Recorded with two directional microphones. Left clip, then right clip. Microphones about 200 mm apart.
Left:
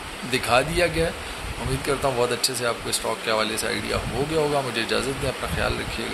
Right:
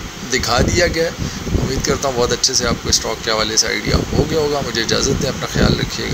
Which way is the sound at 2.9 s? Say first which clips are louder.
Right 10 dB; 10° left (ahead or behind).